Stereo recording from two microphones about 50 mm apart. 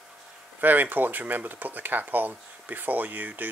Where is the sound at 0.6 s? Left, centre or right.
Right.